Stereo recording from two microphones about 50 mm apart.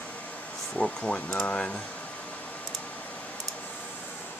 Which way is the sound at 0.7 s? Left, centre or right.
Left.